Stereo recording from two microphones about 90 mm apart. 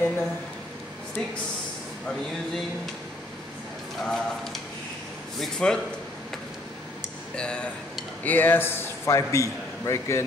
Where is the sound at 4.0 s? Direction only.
10° left (ahead or behind).